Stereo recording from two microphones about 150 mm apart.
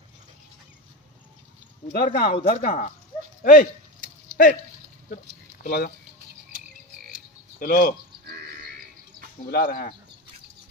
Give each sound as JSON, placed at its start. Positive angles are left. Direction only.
{"t": 1.9, "sound": "speech", "side_deg": 85}
{"t": 2.6, "sound": "speech", "side_deg": 60}
{"t": 3.4, "sound": "a sound", "side_deg": 65}
{"t": 5.1, "sound": "speech", "side_deg": 75}
{"t": 7.1, "sound": "a sound", "side_deg": 70}
{"t": 8.3, "sound": "grunt", "side_deg": -90}
{"t": 9.5, "sound": "speech", "side_deg": 70}